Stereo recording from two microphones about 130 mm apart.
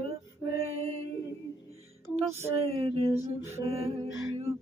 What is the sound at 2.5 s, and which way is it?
Music, 50° right (ahead or behind).